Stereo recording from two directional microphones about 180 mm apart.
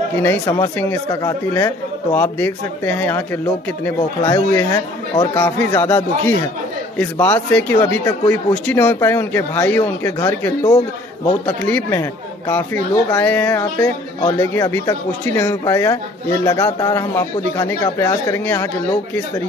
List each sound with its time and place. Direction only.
0.2 s speech: 10° left (ahead or behind)